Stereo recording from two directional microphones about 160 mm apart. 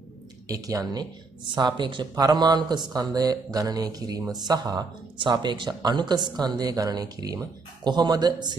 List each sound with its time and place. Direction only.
0.5 s speech: 20° right (ahead or behind)